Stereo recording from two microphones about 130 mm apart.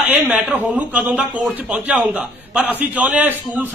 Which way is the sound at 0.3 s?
10° right (ahead or behind).